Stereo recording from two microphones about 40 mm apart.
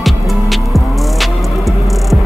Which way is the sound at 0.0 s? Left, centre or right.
Centre.